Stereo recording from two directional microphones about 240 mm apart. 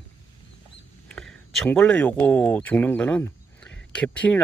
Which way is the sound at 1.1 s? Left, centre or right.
Centre.